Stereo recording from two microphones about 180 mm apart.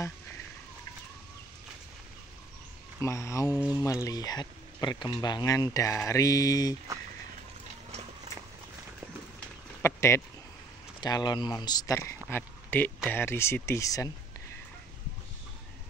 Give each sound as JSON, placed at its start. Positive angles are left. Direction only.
{"t": 3.0, "sound": "speech", "side_deg": 15}
{"t": 9.8, "sound": "a sound", "side_deg": 15}
{"t": 11.0, "sound": "speech", "side_deg": 25}